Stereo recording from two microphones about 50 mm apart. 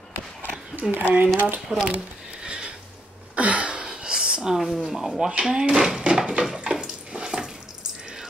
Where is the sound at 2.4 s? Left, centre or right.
Centre.